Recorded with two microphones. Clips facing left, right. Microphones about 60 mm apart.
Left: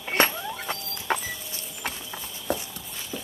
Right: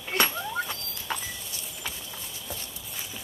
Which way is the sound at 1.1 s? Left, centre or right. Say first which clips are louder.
Left 6 dB; left.